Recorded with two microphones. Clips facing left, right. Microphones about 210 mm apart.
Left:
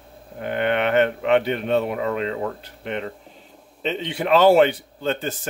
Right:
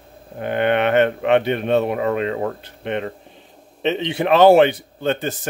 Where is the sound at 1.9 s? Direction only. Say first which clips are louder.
Right 3 dB; 45° right (ahead or behind).